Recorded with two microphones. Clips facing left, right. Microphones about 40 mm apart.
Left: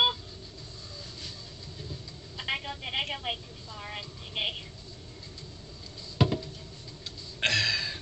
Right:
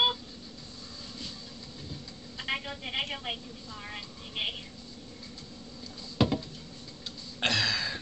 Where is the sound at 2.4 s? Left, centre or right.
Centre.